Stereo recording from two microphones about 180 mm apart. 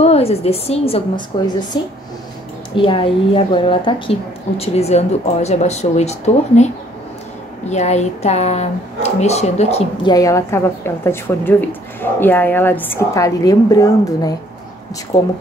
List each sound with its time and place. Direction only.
0.0 s a woman's voice: 35° left (ahead or behind)
2.7 s a woman's voice: 30° left (ahead or behind)
7.7 s a woman's voice: 40° left (ahead or behind)
10.1 s a woman's voice: 20° left (ahead or behind)